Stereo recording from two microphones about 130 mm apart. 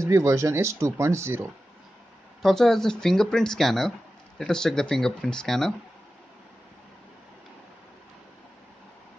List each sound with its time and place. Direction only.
0.0 s speech: 25° right (ahead or behind)
2.4 s speech: 5° left (ahead or behind)